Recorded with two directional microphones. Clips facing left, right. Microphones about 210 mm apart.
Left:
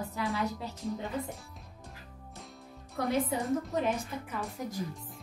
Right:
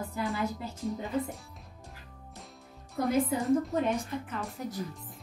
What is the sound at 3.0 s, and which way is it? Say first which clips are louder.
A woman's voice: right 2 dB; centre (ahead or behind).